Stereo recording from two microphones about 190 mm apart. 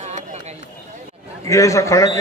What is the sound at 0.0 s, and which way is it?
Run, 40° right (ahead or behind).